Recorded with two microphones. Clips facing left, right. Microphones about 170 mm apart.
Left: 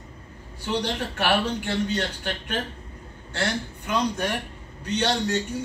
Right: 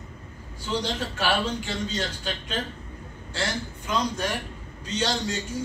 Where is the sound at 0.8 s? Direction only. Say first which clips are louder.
Left 1 dB; 65° left (ahead or behind).